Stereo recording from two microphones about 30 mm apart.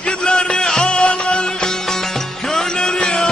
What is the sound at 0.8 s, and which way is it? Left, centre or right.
Music, left.